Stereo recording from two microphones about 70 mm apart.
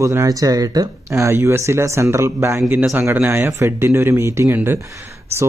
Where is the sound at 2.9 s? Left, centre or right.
Right.